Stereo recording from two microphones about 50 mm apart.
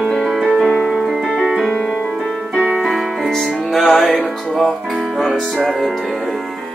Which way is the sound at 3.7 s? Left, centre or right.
Centre.